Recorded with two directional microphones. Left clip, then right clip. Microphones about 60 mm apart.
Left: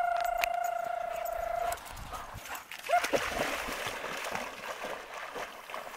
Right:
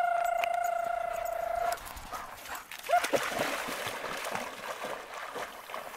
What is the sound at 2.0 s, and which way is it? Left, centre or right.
Clip-clop, left.